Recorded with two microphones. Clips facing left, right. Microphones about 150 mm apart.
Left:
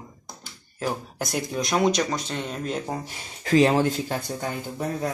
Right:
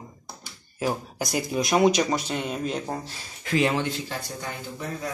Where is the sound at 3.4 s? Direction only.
35° left (ahead or behind).